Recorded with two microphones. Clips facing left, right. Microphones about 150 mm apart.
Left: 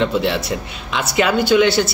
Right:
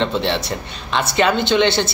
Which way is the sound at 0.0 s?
5° left (ahead or behind).